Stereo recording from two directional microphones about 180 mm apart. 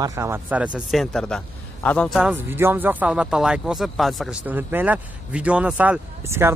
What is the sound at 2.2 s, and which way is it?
Speech, 10° right (ahead or behind).